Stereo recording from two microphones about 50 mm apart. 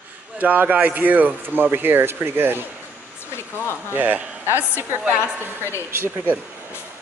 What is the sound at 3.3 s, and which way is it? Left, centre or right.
Speech, left.